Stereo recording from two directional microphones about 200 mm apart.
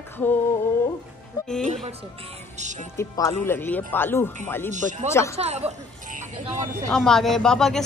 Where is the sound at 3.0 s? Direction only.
15° left (ahead or behind).